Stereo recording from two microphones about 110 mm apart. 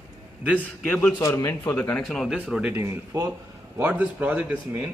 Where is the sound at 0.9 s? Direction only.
15° left (ahead or behind).